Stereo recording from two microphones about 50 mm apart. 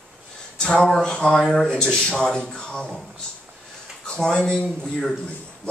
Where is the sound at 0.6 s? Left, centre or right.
Centre.